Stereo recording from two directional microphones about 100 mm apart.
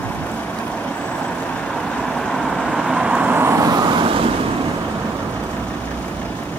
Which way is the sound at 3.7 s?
40° right (ahead or behind).